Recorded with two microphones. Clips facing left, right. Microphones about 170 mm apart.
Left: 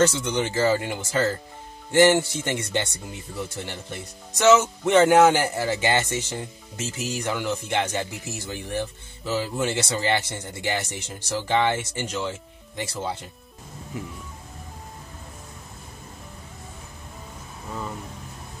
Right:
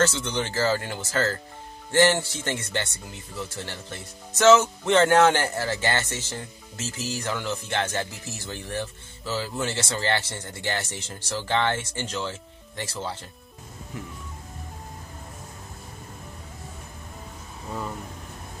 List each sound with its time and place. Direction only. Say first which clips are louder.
0.0 s speech: left 3 dB; 15° left (ahead or behind)